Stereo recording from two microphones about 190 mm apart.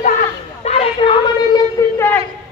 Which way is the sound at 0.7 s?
30° left (ahead or behind).